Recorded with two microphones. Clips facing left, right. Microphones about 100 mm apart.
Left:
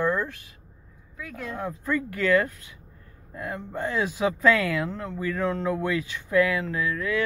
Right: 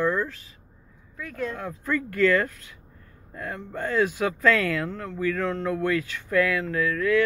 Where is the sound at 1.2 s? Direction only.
5° left (ahead or behind).